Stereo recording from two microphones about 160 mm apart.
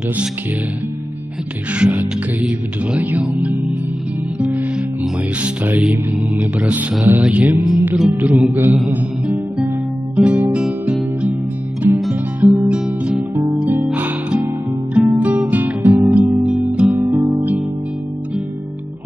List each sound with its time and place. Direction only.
1.7 s music: 10° right (ahead or behind)
4.4 s music: 10° right (ahead or behind)
13.3 s music: 20° right (ahead or behind)